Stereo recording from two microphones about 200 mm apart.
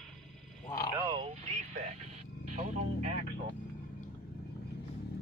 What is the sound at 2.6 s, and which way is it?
Vehicle, 35° right (ahead or behind).